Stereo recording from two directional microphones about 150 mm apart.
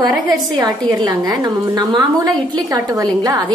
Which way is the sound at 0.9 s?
25° right (ahead or behind).